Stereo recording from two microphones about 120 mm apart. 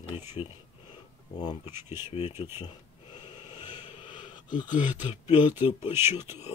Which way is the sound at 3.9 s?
40° left (ahead or behind).